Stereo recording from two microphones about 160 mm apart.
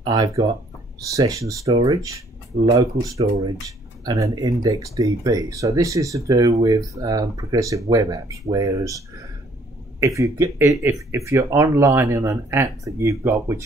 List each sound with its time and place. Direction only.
0.0 s speech: 25° right (ahead or behind)